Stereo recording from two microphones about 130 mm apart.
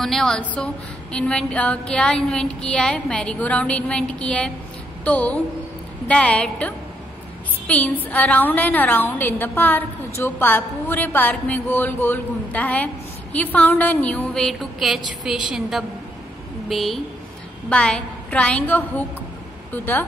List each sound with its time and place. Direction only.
0.0 s a woman's voice: 5° left (ahead or behind)